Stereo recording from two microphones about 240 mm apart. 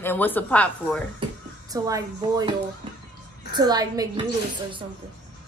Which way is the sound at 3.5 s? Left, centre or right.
Centre.